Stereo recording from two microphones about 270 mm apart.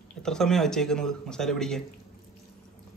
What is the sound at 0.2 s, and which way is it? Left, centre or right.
Speech, centre.